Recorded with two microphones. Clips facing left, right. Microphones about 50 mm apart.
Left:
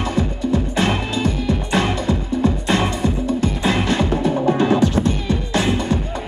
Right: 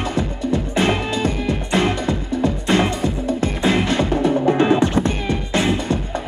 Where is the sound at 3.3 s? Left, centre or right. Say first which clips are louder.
Right 1 dB; right.